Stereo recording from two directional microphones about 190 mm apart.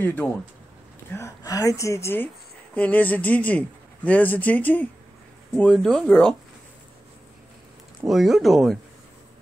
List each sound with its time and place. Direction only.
0.0 s a man's voice: 10° left (ahead or behind)
8.1 s speech: centre (ahead or behind)